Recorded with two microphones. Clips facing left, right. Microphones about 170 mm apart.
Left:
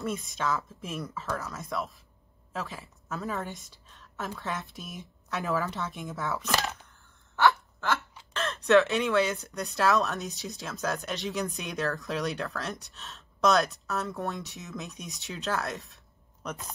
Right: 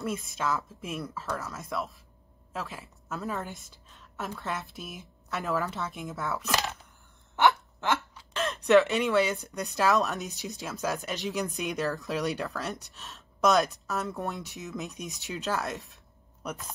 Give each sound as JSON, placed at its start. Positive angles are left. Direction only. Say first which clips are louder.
{"t": 0.0, "sound": "a woman's voice", "louder": "even", "side_deg": 0}
{"t": 7.3, "sound": "gasp", "louder": "even", "side_deg": -20}
{"t": 8.3, "sound": "speech", "louder": "right 1 dB", "side_deg": -15}